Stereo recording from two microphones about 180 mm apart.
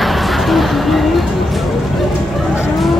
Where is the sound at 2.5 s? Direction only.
Centre (ahead or behind).